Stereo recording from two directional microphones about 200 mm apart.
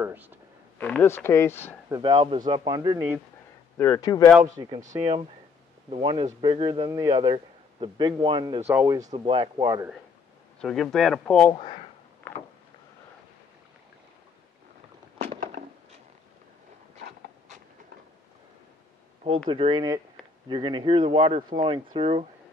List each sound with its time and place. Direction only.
0.0 s speech: 10° right (ahead or behind)
0.7 s speech: 10° left (ahead or behind)
1.9 s a man's voice: 20° right (ahead or behind)
3.7 s speech: 15° left (ahead or behind)
4.7 s a man's voice: 35° right (ahead or behind); by 9.8 s 20° right (ahead or behind)
10.6 s speech: centre (ahead or behind)
11.5 s speech: 25° left (ahead or behind)
15.2 s a sound: 40° right (ahead or behind)
19.2 s a man's voice: 25° right (ahead or behind)